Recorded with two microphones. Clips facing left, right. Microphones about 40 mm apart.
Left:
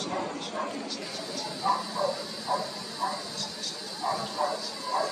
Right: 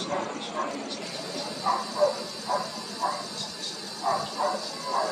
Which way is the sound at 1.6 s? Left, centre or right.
Left.